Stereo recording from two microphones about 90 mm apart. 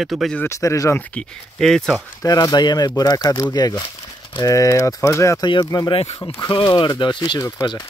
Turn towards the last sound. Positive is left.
turn(degrees=35)  # may be behind; listen again after turning